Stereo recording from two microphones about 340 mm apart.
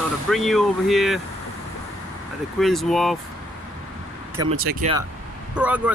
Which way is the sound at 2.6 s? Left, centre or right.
Centre.